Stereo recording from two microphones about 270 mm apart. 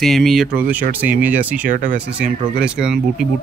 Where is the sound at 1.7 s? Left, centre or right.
Right.